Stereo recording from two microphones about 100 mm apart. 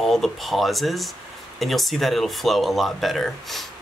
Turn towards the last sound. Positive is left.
turn(degrees=0)  # may be behind; listen again after turning